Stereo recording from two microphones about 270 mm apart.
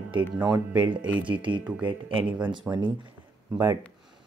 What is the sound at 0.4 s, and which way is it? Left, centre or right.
Speech, centre.